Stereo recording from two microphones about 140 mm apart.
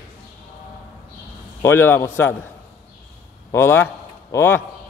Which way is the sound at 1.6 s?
15° left (ahead or behind).